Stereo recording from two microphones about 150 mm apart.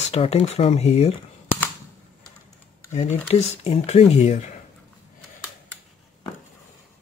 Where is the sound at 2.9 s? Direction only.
50° left (ahead or behind).